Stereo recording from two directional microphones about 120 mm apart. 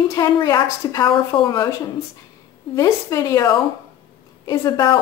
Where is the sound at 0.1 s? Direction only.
30° left (ahead or behind).